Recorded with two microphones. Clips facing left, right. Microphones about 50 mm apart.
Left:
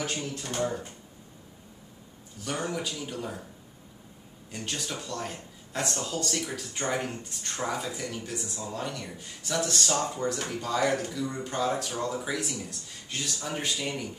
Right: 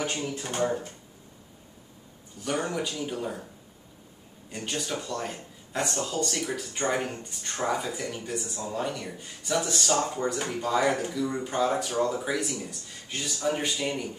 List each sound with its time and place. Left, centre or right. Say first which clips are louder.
0.3 s speech: right 3 dB; centre
2.4 s speech: right 3 dB; centre
4.5 s speech: right 3 dB; centre